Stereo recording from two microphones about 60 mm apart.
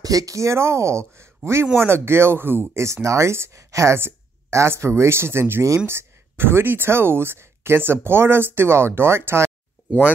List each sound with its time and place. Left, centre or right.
0.0 s speech: right
2.8 s speech: right